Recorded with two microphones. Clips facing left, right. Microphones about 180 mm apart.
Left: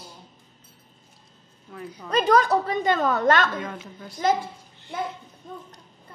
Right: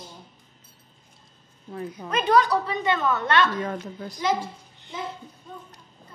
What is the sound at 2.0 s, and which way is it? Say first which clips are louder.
A woman's voice: left 1 dB; 40° left (ahead or behind).